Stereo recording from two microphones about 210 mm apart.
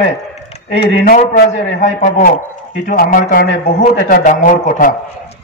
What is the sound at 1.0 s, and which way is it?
A man's voice, 45° left (ahead or behind).